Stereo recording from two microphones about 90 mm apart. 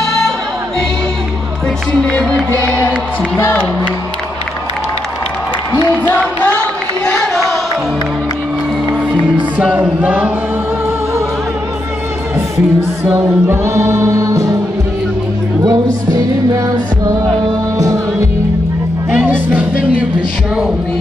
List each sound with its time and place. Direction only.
0.0 s music: 5° left (ahead or behind)
2.0 s music: 10° left (ahead or behind)
6.0 s music: 15° left (ahead or behind)
9.6 s music: 15° right (ahead or behind)
13.0 s music: 30° right (ahead or behind)
15.6 s music: 50° right (ahead or behind)
19.0 s music: 20° right (ahead or behind)